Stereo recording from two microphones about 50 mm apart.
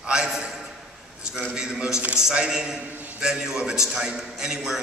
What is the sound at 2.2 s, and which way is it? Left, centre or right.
A man's voice, centre.